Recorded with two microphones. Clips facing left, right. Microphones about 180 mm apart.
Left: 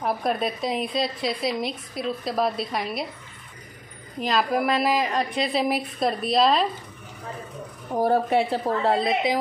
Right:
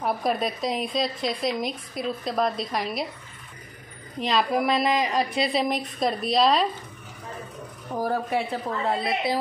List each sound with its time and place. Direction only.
0.0 s a woman's voice: centre (ahead or behind)
4.2 s a woman's voice: centre (ahead or behind)
7.9 s a woman's voice: 25° left (ahead or behind)
9.0 s a woman's voice: 20° left (ahead or behind)